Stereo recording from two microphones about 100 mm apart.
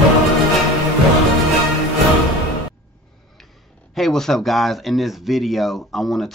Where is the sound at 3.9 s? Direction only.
Centre (ahead or behind).